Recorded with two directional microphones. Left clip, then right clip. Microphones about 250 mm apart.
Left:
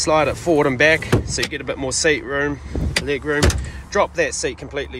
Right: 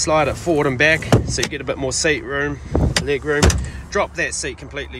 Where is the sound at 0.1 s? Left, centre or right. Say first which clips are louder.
Left 1 dB; centre.